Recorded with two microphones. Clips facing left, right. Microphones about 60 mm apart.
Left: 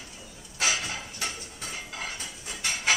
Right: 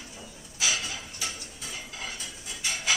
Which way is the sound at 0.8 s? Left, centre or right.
Left.